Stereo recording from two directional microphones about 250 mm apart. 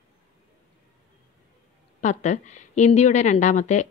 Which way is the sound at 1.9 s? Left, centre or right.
Left.